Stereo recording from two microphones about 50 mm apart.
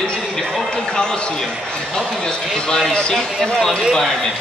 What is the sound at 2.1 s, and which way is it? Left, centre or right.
Speech, centre.